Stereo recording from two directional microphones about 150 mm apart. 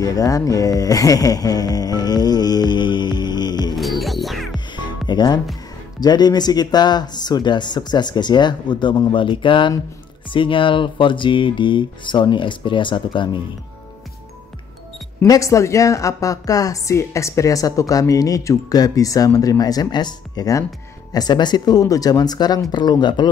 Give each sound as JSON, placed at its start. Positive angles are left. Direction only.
{"t": 0.0, "sound": "speech", "side_deg": 25}
{"t": 4.0, "sound": "music", "side_deg": 0}
{"t": 4.7, "sound": "music", "side_deg": 30}
{"t": 5.9, "sound": "a woman's voice", "side_deg": 25}
{"t": 15.1, "sound": "a woman's voice", "side_deg": 20}